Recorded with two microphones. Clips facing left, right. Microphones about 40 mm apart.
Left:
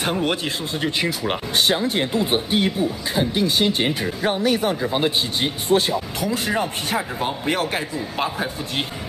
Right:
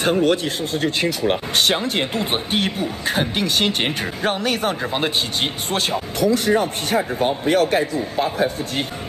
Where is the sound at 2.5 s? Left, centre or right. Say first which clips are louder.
Left 1 dB; right.